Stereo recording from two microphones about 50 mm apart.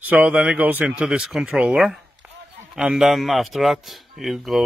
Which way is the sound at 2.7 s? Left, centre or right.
Centre.